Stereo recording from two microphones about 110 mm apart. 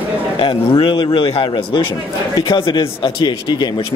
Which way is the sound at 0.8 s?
55° left (ahead or behind).